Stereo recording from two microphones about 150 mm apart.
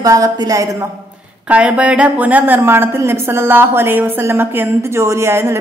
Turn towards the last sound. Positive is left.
turn(degrees=-15)  # may be behind; listen again after turning